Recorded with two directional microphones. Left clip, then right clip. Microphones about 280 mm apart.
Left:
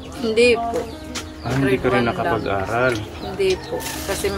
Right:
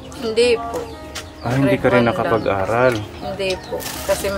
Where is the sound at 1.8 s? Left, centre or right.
Centre.